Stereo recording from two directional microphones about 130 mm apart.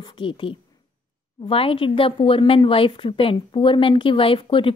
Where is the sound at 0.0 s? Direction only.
40° left (ahead or behind).